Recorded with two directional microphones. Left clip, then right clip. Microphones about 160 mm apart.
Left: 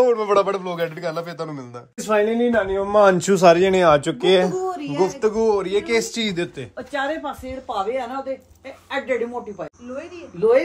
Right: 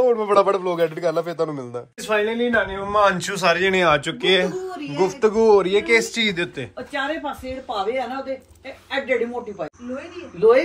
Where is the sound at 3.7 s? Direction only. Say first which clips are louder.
Left 2 dB; 30° left (ahead or behind).